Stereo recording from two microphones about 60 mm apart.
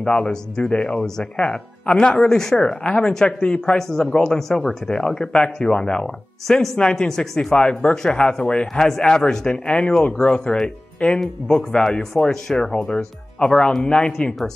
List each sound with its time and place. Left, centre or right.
0.0 s speech: centre
0.9 s speech: centre
1.3 s speech: centre